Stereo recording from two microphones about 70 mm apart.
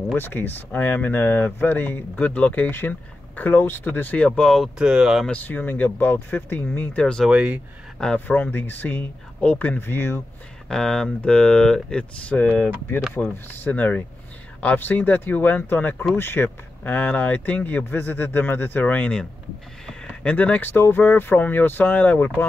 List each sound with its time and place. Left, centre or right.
0.1 s speech: left
4.4 s speech: centre
4.7 s speech: centre
5.4 s speech: left
7.0 s speech: centre
7.2 s speech: centre
8.3 s speech: left
9.8 s speech: left
10.7 s speech: centre; by 22.5 s left